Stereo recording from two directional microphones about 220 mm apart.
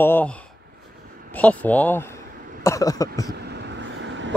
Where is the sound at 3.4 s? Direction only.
50° right (ahead or behind).